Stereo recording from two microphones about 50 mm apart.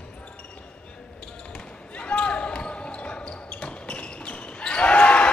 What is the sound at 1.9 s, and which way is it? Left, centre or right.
Basketball bounce, left.